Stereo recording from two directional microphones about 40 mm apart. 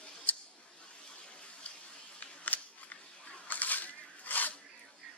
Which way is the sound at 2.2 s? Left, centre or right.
Left.